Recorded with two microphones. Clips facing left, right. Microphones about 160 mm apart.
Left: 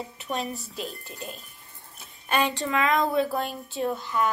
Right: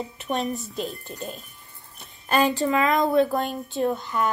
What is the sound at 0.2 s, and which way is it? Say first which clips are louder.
Speech: right 5 dB; centre (ahead or behind).